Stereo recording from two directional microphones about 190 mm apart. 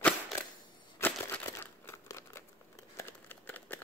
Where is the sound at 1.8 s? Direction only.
15° left (ahead or behind).